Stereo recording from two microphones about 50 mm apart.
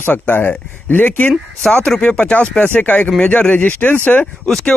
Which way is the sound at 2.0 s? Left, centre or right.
Left.